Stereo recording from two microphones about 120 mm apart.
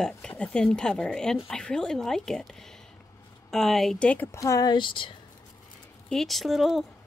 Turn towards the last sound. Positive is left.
turn(degrees=0)  # may be behind; listen again after turning